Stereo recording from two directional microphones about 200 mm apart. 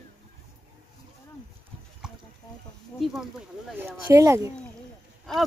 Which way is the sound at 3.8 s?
15° right (ahead or behind).